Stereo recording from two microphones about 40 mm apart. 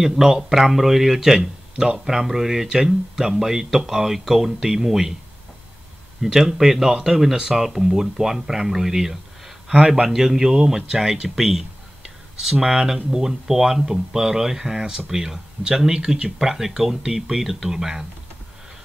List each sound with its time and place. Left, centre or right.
0.0 s speech: centre
6.2 s speech: centre
9.8 s speech: right
10.0 s speech: centre